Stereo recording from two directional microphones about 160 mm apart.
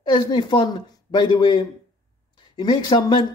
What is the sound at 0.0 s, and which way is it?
Speech, 25° left (ahead or behind).